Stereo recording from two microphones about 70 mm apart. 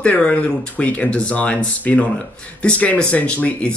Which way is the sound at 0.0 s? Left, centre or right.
Centre.